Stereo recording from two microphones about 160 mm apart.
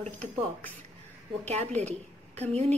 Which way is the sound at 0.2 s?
10° left (ahead or behind).